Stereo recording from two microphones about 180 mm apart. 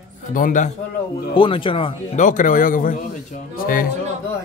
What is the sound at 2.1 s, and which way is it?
Speech, 45° left (ahead or behind).